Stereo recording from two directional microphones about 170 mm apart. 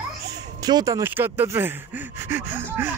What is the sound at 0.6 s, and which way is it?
Speech, 20° right (ahead or behind).